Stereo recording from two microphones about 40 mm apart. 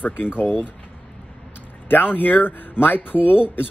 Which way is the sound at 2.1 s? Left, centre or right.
Left.